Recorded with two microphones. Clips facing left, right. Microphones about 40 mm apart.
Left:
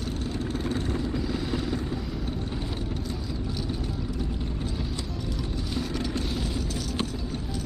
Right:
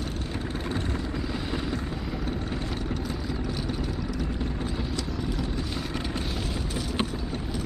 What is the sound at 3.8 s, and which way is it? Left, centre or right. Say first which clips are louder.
Vehicle: right 2 dB; right.